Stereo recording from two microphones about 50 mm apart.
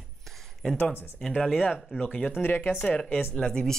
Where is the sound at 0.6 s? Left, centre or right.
Centre.